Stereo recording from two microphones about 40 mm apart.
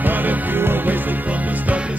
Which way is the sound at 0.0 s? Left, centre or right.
Right.